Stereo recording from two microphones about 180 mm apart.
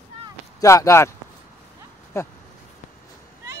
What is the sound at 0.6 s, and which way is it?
Speech, 20° left (ahead or behind).